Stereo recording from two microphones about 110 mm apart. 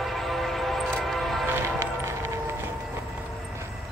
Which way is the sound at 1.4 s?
20° right (ahead or behind).